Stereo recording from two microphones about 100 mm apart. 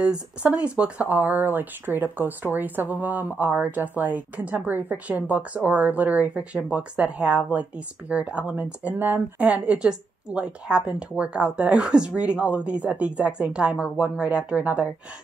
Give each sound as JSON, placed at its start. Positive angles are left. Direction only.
{"t": 0.0, "sound": "speech", "side_deg": -10}